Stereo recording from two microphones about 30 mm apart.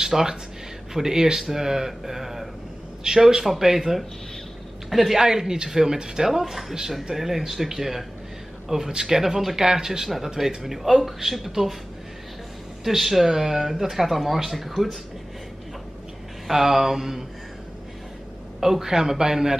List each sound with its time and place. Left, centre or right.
0.0 s speech: centre
3.1 s speech: right
3.4 s speech: centre
4.8 s a sound: centre
5.1 s speech: centre
9.2 s speech: centre
9.6 s speech: right
10.0 s speech: centre
12.8 s speech: centre
16.4 s speech: centre
18.6 s speech: centre